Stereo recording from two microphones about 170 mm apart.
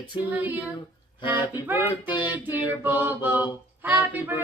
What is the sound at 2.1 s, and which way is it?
Speech, 30° left (ahead or behind).